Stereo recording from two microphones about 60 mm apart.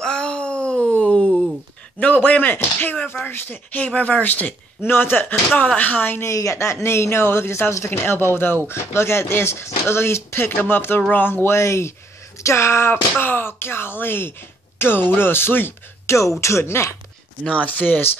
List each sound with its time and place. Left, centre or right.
0.0 s a sound: centre
0.8 s wail: centre
2.0 s speech: left
6.3 s speech: left
7.9 s speech: left
11.4 s speech: left
12.9 s speech: left
16.2 s speech: left
17.4 s speech: left